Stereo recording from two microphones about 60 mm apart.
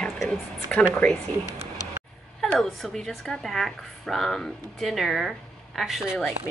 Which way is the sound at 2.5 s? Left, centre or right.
Centre.